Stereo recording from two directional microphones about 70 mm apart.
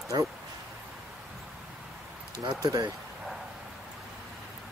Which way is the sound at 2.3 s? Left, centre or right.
Right.